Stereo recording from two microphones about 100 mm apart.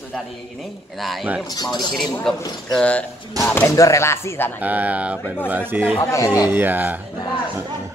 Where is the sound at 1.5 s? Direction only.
45° left (ahead or behind).